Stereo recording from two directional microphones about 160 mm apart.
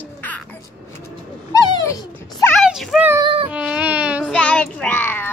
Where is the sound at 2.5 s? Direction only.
Centre (ahead or behind).